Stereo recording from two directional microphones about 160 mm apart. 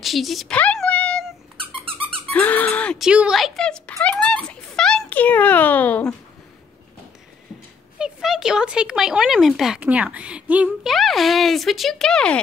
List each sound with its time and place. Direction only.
0.0 s a sound: centre (ahead or behind)
1.9 s dog: 35° right (ahead or behind)
2.3 s squeak: 10° left (ahead or behind)
3.0 s speech: 5° right (ahead or behind)
4.0 s a sound: 5° left (ahead or behind)
4.7 s a child's voice: 5° left (ahead or behind)
8.0 s speech: 5° right (ahead or behind)